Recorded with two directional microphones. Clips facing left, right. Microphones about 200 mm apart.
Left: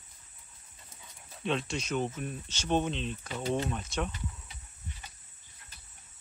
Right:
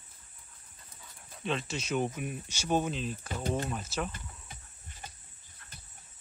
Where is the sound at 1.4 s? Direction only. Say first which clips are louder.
Left 2 dB; centre (ahead or behind).